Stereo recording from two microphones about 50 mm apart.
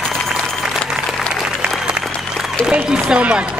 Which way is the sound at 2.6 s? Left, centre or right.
Centre.